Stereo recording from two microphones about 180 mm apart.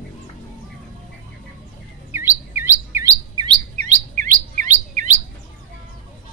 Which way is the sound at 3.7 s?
45° right (ahead or behind).